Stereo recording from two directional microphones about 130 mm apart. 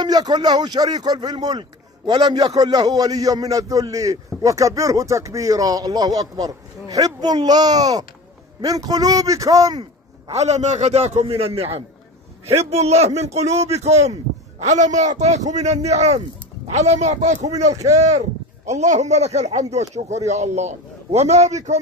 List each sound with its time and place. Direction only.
0.0 s a man's voice: 30° right (ahead or behind)
10.3 s speech: 60° right (ahead or behind)